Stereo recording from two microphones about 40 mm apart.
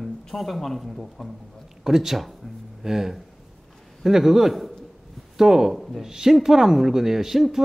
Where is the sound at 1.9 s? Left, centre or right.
Centre.